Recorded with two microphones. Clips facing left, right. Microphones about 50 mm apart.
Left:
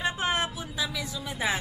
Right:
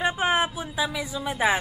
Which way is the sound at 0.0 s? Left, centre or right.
Centre.